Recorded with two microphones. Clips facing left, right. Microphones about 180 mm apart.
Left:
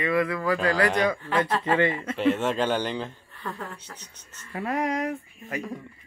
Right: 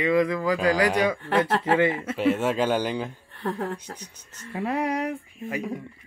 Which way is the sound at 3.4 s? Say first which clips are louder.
Right 7 dB; 50° right (ahead or behind).